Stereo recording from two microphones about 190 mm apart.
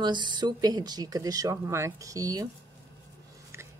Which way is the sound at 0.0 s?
25° right (ahead or behind).